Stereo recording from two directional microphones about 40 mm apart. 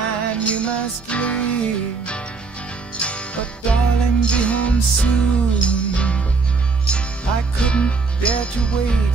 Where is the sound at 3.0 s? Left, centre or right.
Left.